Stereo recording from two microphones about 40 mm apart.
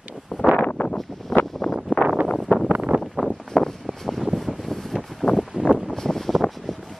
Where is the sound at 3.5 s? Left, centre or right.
Centre.